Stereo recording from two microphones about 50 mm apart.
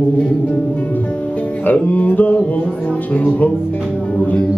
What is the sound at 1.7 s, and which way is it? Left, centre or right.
Mantra, left.